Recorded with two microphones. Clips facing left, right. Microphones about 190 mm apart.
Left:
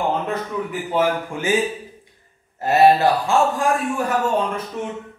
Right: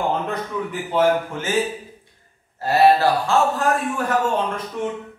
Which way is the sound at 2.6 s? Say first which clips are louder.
Left 1 dB; 20° left (ahead or behind).